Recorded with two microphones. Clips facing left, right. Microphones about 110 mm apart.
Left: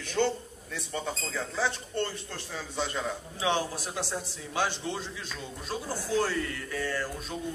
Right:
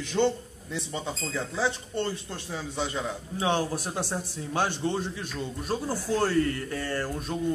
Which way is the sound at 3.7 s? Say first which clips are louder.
Right 3 dB; 50° right (ahead or behind).